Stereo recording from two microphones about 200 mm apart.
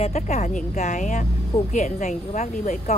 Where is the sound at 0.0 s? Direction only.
35° left (ahead or behind).